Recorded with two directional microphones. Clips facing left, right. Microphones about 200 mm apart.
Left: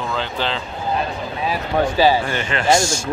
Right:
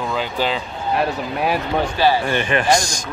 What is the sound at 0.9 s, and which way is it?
Speech, 70° right (ahead or behind).